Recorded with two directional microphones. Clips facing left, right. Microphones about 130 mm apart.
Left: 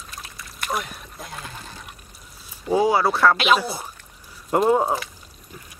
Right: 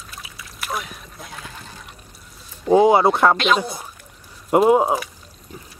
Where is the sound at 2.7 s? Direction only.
25° right (ahead or behind).